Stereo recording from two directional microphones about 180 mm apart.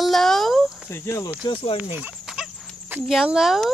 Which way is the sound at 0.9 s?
15° left (ahead or behind).